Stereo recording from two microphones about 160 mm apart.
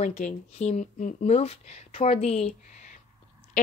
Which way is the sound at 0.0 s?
45° left (ahead or behind).